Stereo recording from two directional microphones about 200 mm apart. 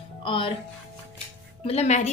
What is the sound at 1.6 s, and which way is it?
Speech, 35° left (ahead or behind).